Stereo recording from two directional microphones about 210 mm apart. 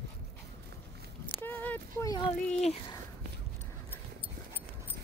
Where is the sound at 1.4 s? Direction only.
10° left (ahead or behind).